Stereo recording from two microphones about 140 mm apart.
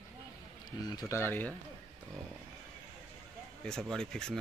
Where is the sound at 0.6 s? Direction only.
25° left (ahead or behind).